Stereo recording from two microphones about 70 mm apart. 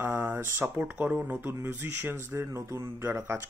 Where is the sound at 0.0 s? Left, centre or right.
Right.